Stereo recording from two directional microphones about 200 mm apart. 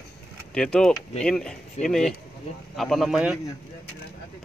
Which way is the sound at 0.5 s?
5° left (ahead or behind).